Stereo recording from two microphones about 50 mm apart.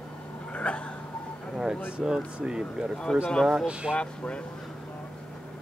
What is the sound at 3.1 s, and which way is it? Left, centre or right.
Speech, centre.